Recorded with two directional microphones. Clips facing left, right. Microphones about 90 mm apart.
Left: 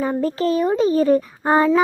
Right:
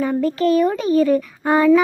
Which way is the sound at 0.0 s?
30° left (ahead or behind).